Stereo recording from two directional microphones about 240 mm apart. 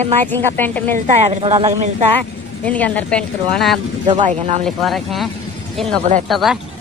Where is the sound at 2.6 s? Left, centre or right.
Centre.